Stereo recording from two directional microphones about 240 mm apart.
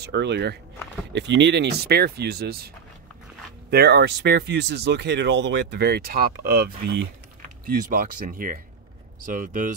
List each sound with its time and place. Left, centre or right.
0.0 s speech: right
3.7 s speech: right